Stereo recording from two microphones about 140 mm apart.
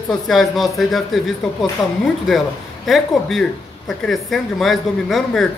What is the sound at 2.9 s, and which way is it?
Speech, centre (ahead or behind).